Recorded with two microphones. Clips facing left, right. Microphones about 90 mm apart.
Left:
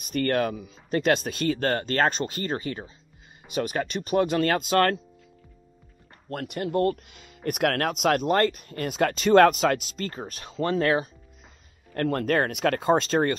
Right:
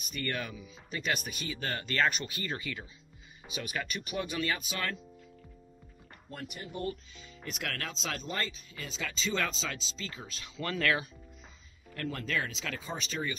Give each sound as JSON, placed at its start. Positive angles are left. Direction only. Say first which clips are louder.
{"t": 0.0, "sound": "speech", "louder": "left 12 dB", "side_deg": 45}
{"t": 1.1, "sound": "speech", "louder": "left 11 dB", "side_deg": 90}
{"t": 1.5, "sound": "speech", "louder": "left 10 dB", "side_deg": 55}
{"t": 4.2, "sound": "speech", "louder": "left 12 dB", "side_deg": 55}
{"t": 4.5, "sound": "speech", "louder": "left 13 dB", "side_deg": 75}
{"t": 6.3, "sound": "speech", "louder": "left 14 dB", "side_deg": 85}
{"t": 10.6, "sound": "speech", "louder": "left 8 dB", "side_deg": 30}
{"t": 11.9, "sound": "speech", "louder": "left 11 dB", "side_deg": 55}